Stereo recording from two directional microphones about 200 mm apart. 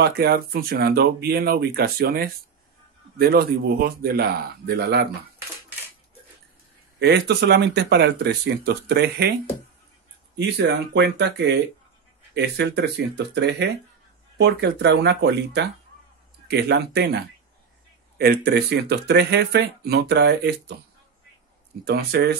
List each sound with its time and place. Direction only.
0.0 s speech: 50° right (ahead or behind)
7.0 s speech: 55° right (ahead or behind)
10.3 s speech: 60° right (ahead or behind)
21.8 s speech: 55° right (ahead or behind)